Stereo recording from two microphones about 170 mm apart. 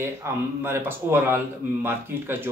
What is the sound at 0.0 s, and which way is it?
Speech, 15° right (ahead or behind).